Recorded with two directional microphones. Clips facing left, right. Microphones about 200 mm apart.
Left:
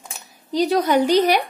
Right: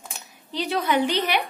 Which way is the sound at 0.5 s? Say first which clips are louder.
Left 6 dB; 40° left (ahead or behind).